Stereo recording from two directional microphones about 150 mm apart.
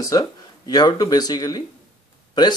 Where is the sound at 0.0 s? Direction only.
25° left (ahead or behind).